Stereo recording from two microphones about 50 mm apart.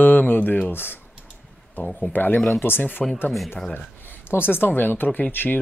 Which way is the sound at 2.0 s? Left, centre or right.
Left.